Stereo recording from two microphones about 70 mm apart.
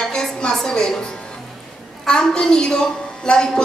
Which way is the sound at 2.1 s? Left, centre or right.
Centre.